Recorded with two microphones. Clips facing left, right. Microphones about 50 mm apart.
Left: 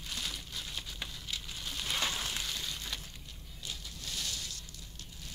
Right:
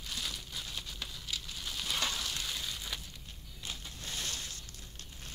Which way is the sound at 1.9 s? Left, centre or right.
Centre.